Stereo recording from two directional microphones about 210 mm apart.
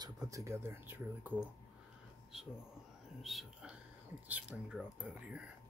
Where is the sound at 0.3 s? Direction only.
15° right (ahead or behind).